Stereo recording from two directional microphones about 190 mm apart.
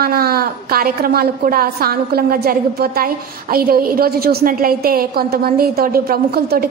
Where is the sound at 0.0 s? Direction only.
55° right (ahead or behind).